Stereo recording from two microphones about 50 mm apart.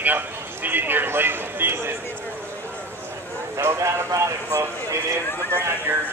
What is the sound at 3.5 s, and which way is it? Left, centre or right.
Speech, right.